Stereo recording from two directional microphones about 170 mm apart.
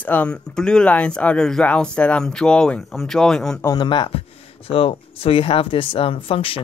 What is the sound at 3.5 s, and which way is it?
Speech, 20° left (ahead or behind).